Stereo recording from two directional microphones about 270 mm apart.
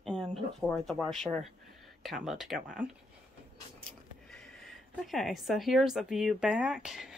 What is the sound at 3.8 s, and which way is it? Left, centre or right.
Speech, centre.